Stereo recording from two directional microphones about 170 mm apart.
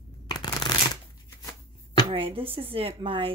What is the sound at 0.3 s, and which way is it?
Shuffling cards, 25° left (ahead or behind).